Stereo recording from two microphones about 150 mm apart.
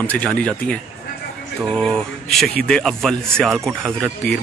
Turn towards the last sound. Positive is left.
turn(degrees=0)  # may be behind; listen again after turning